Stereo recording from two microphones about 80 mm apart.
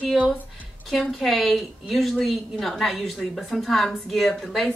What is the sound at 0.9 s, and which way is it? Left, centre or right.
A woman's voice, centre.